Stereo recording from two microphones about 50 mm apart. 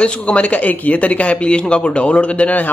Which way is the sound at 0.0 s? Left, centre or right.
Left.